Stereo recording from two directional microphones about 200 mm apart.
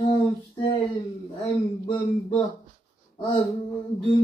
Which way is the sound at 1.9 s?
25° left (ahead or behind).